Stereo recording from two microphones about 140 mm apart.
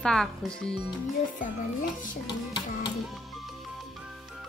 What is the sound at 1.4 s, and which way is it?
Speech, 70° left (ahead or behind).